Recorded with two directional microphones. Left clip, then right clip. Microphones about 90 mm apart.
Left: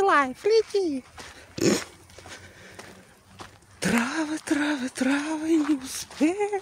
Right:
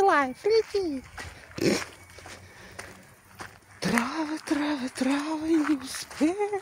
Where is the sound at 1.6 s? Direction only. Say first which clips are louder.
Left 2 dB; 45° left (ahead or behind).